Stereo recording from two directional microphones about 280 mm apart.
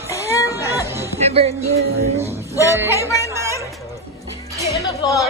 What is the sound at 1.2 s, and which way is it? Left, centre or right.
Music, right.